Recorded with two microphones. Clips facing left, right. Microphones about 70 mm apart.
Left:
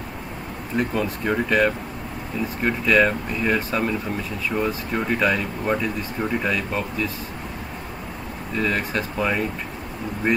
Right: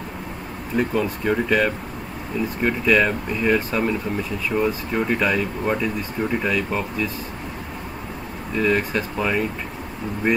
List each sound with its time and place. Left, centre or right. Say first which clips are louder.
0.7 s speech: right 2 dB; centre
8.5 s speech: right 3 dB; centre